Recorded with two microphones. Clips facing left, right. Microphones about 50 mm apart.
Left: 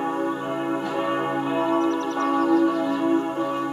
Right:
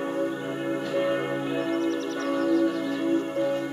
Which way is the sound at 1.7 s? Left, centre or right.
Centre.